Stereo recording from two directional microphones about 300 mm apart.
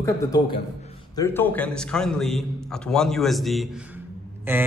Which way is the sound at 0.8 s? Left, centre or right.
Centre.